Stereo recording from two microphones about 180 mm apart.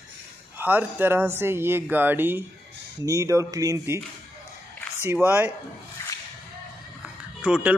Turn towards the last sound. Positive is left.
turn(degrees=-10)  # may be behind; listen again after turning